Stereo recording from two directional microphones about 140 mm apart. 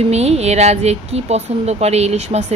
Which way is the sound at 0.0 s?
50° right (ahead or behind).